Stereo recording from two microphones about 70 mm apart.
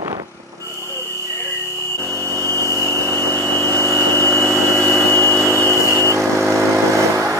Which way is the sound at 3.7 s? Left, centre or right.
Left.